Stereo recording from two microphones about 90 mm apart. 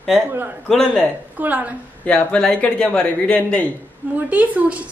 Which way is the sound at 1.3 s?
15° right (ahead or behind).